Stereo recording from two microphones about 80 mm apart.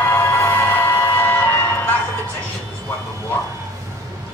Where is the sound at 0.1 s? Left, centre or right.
Left.